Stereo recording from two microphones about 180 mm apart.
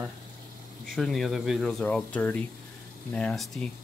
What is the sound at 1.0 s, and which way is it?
Speech, centre (ahead or behind).